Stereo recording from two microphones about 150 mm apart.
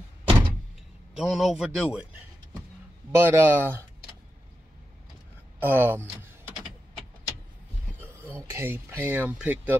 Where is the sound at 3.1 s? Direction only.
15° right (ahead or behind).